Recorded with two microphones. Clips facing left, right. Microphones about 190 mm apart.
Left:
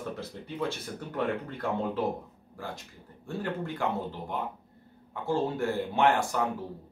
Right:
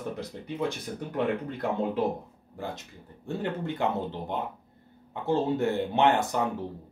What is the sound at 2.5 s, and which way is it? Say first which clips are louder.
Speech: right 3 dB; 20° right (ahead or behind).